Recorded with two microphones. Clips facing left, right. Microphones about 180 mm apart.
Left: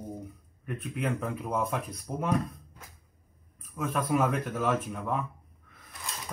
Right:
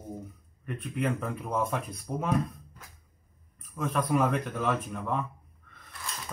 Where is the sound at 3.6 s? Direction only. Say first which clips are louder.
Right 1 dB; centre (ahead or behind).